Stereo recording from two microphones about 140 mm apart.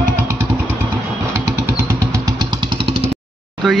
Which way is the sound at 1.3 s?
20° right (ahead or behind).